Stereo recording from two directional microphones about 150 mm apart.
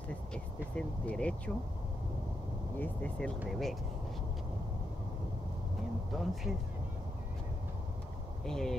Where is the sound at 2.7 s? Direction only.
10° left (ahead or behind).